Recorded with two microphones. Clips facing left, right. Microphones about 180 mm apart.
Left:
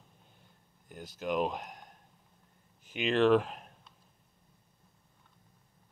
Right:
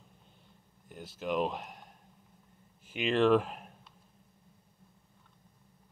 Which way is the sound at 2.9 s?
Centre (ahead or behind).